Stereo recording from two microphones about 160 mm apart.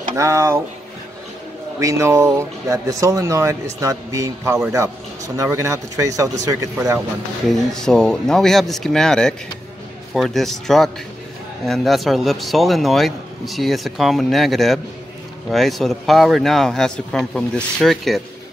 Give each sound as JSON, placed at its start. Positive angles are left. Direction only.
{"t": 0.1, "sound": "speech", "side_deg": -20}
{"t": 1.8, "sound": "speech", "side_deg": -20}
{"t": 7.4, "sound": "speech", "side_deg": 5}